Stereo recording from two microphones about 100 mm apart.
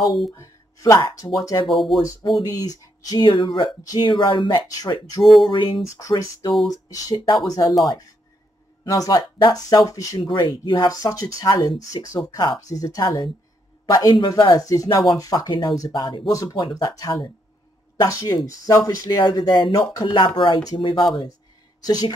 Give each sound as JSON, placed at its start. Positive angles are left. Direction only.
{"t": 0.3, "sound": "speech", "side_deg": 30}
{"t": 1.7, "sound": "speech", "side_deg": 0}
{"t": 2.5, "sound": "speech", "side_deg": 40}
{"t": 5.4, "sound": "a sound", "side_deg": 55}
{"t": 5.9, "sound": "speech", "side_deg": 35}
{"t": 8.8, "sound": "speech", "side_deg": 35}
{"t": 10.2, "sound": "speech", "side_deg": 50}
{"t": 10.9, "sound": "a man's voice", "side_deg": 35}
{"t": 21.8, "sound": "speech", "side_deg": 40}